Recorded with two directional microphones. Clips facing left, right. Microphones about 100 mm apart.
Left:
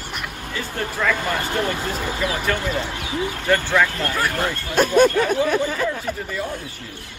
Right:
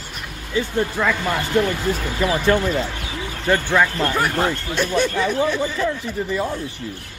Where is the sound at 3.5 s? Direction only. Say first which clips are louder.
Right 2 dB; 15° right (ahead or behind).